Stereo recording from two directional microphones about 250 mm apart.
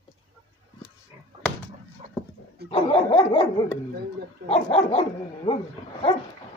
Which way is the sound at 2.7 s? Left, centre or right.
Left.